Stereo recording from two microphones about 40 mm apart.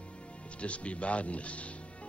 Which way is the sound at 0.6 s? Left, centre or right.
Left.